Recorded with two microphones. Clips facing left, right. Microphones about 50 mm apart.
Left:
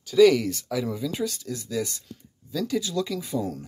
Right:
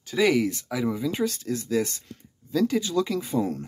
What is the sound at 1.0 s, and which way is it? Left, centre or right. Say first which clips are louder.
Speech: right 2 dB; right.